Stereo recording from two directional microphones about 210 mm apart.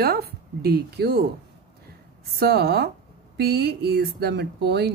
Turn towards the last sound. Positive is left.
turn(degrees=-50)  # may be behind; listen again after turning